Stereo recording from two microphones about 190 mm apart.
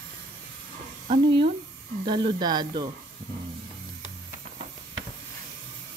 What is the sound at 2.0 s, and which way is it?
Speech, 25° right (ahead or behind).